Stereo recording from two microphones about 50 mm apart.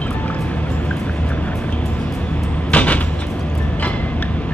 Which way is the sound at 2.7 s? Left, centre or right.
Left.